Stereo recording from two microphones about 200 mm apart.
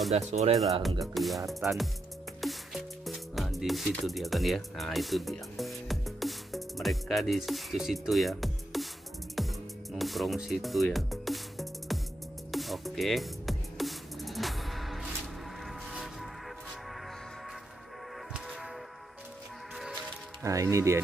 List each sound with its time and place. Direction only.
0.1 s speech: 35° right (ahead or behind)
1.0 s music: centre (ahead or behind)
18.3 s music: 5° right (ahead or behind)
20.4 s speech: 15° right (ahead or behind)